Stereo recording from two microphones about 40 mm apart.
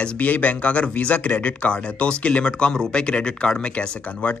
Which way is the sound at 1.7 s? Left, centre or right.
Left.